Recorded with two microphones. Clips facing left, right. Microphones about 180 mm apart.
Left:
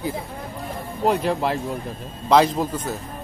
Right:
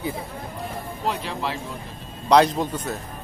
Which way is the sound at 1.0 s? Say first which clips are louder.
Left 7 dB; 45° left (ahead or behind).